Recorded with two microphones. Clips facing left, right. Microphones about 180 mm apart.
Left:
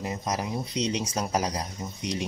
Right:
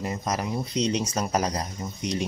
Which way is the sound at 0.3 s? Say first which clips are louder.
Right 2 dB; 15° left (ahead or behind).